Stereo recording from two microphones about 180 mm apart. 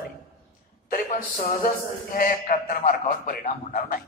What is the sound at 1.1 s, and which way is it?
A man's voice, 55° left (ahead or behind).